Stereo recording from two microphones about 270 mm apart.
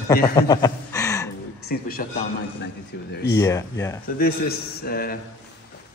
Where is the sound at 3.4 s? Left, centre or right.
Centre.